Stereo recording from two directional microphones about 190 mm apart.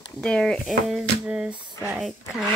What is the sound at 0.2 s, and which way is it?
Speech, 5° left (ahead or behind).